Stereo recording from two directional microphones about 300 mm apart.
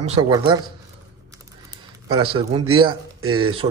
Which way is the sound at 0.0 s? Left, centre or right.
Centre.